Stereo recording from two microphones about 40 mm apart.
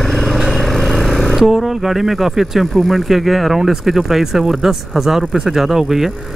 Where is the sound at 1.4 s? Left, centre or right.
Centre.